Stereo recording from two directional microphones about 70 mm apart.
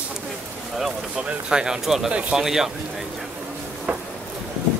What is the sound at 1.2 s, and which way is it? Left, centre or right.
Speech, centre.